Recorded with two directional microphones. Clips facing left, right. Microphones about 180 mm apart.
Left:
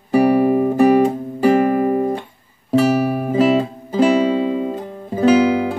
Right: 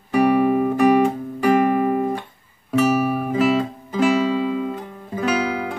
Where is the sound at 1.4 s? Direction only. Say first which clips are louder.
Left 3 dB; 40° left (ahead or behind).